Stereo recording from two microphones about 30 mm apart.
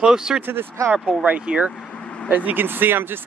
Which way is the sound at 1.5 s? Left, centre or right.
Right.